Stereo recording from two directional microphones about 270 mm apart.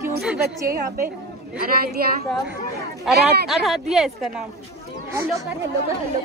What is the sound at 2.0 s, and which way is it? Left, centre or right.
Speech, right.